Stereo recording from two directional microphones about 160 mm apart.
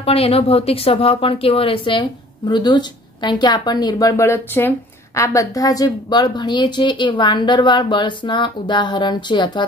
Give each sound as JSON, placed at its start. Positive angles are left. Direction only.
{"t": 0.0, "sound": "speech", "side_deg": 35}